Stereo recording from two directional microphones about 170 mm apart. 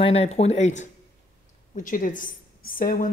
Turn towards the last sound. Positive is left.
turn(degrees=55)  # may be behind; listen again after turning